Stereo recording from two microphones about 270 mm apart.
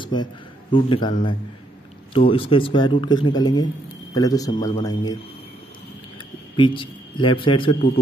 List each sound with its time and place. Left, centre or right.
0.0 s a man's voice: centre
6.5 s a man's voice: centre